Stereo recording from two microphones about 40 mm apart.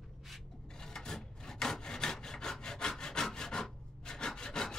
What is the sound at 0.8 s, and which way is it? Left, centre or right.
Wood, centre.